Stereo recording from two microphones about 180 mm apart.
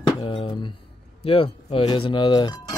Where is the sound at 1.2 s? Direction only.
30° left (ahead or behind).